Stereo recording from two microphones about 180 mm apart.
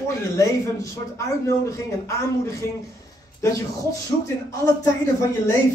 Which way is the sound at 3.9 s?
20° left (ahead or behind).